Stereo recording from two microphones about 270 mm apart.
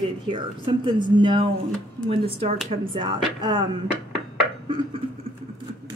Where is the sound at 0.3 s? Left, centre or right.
Centre.